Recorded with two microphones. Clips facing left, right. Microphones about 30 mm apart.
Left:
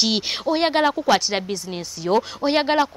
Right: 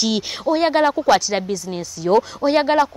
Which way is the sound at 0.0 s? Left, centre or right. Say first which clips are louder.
Right 1 dB; left.